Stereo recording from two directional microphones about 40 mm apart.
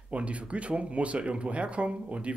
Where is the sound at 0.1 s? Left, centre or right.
Right.